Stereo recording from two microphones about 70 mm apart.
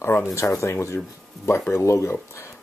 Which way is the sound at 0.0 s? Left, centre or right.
Left.